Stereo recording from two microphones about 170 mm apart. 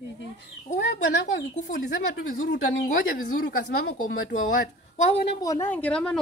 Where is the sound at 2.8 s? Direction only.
60° left (ahead or behind).